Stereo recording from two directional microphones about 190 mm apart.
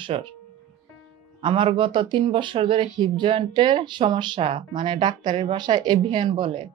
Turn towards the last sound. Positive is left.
turn(degrees=-30)  # may be behind; listen again after turning